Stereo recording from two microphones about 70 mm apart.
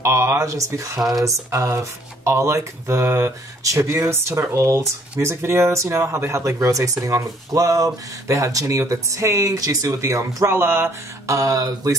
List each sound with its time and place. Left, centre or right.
0.0 s speech: right
11.2 s speech: right